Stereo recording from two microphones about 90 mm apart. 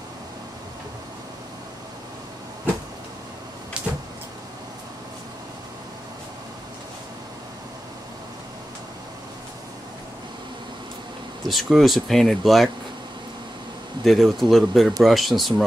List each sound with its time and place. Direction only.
3.8 s power windows: 10° right (ahead or behind)
11.4 s speech: centre (ahead or behind)
14.0 s speech: centre (ahead or behind)